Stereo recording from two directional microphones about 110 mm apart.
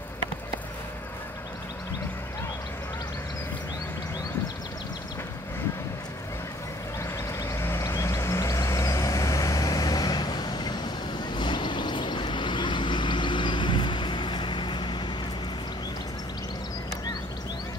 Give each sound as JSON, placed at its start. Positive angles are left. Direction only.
{"t": 7.0, "sound": "vehicle", "side_deg": 25}